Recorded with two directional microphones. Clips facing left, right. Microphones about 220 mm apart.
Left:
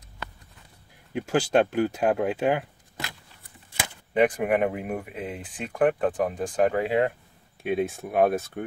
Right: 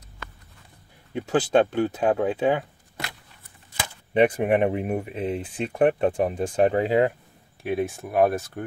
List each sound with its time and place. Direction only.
1.1 s speech: 10° left (ahead or behind)
4.1 s speech: 25° right (ahead or behind)
7.6 s speech: centre (ahead or behind)